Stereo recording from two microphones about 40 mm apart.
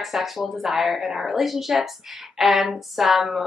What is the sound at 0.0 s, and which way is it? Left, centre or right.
Speech, centre.